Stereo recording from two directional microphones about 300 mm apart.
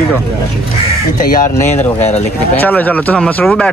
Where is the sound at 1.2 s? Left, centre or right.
Left.